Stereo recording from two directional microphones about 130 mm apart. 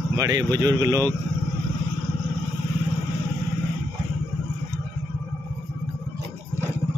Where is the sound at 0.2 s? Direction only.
30° right (ahead or behind).